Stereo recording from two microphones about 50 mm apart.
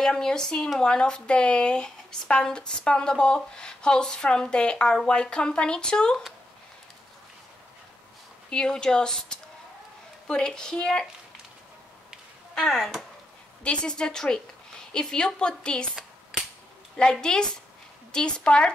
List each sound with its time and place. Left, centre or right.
0.0 s speech: centre
8.5 s speech: centre
12.5 s speech: centre
13.7 s speech: centre
17.0 s a woman's voice: centre